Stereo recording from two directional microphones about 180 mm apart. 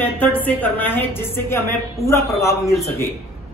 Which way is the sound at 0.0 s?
10° left (ahead or behind).